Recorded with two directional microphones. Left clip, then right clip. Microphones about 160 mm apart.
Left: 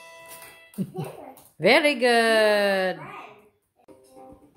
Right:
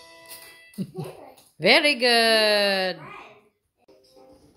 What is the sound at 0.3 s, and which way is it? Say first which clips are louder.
Music: even; centre (ahead or behind).